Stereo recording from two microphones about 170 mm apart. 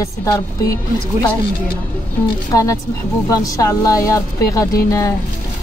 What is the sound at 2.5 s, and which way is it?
Speech, 20° left (ahead or behind).